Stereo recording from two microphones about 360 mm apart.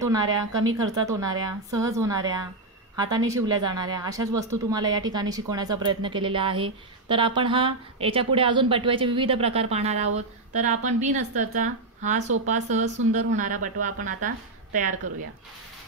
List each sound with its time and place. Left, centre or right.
0.0 s a woman's voice: centre